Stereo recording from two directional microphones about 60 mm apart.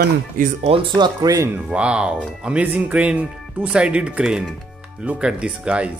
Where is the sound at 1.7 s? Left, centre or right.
Centre.